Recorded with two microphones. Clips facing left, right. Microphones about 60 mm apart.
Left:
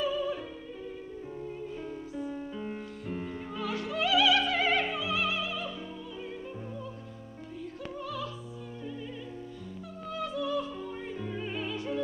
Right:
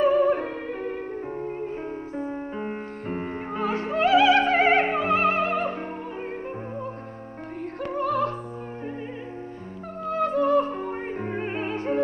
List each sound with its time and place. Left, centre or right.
0.0 s music: right
2.1 s music: right
7.8 s music: right
10.0 s music: right